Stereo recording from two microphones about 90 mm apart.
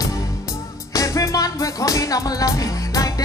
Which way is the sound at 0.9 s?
40° left (ahead or behind).